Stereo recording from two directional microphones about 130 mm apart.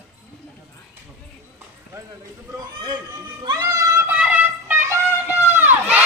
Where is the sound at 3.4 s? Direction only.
25° right (ahead or behind).